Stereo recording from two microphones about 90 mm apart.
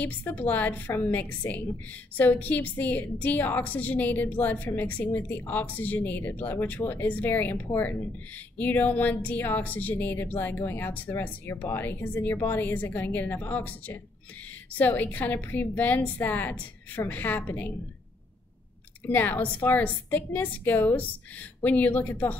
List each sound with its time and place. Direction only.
0.0 s a woman's voice: 25° left (ahead or behind)
8.5 s a woman's voice: 20° left (ahead or behind)
19.0 s a woman's voice: 20° left (ahead or behind)